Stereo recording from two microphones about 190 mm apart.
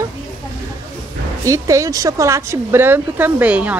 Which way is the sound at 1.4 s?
15° right (ahead or behind).